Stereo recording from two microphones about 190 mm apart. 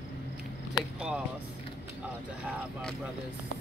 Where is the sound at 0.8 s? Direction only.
5° right (ahead or behind).